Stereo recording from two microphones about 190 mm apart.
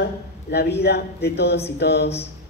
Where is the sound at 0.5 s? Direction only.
60° left (ahead or behind).